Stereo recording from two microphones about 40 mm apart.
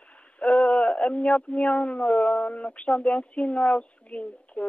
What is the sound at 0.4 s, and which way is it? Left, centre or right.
Speech, left.